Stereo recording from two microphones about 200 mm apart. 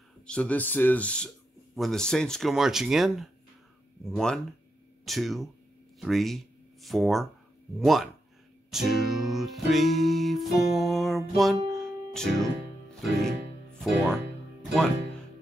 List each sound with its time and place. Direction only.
0.3 s speech: 5° left (ahead or behind)
8.6 s music: centre (ahead or behind)
13.0 s speech: centre (ahead or behind)
14.6 s music: centre (ahead or behind)